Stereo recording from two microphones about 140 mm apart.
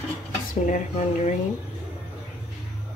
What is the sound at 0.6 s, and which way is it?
Speech, 55° left (ahead or behind).